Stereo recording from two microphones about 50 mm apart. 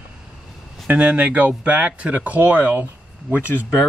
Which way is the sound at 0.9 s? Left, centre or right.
Right.